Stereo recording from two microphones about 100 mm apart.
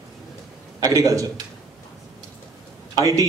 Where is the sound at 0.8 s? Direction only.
35° right (ahead or behind).